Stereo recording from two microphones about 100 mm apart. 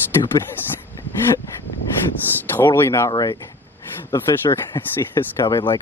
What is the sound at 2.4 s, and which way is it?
Speech, 20° left (ahead or behind).